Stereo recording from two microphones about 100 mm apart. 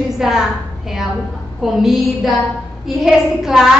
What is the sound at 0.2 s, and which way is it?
A woman's voice, 5° right (ahead or behind).